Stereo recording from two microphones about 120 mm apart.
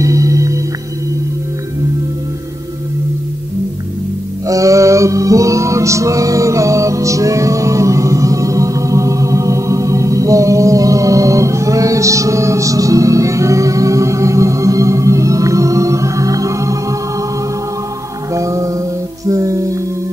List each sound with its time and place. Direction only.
0.0 s music: 25° right (ahead or behind)
4.5 s music: 25° right (ahead or behind)
18.3 s music: 25° right (ahead or behind)